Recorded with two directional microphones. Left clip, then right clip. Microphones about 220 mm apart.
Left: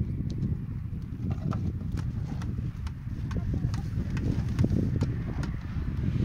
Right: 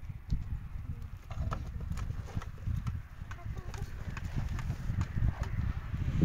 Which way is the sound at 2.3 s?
45° left (ahead or behind).